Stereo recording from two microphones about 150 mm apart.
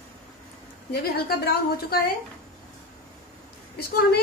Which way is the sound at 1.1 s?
90° left.